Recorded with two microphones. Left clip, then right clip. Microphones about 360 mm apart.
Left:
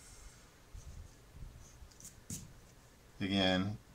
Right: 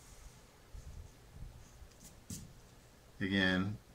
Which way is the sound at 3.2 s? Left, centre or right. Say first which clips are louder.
Even; centre.